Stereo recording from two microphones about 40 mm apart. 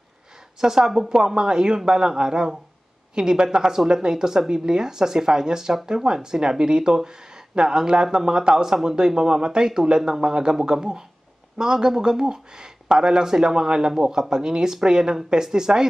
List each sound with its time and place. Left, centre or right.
0.6 s a man's voice: centre